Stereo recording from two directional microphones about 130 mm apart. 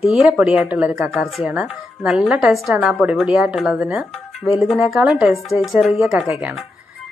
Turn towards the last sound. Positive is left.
turn(degrees=-5)  # may be behind; listen again after turning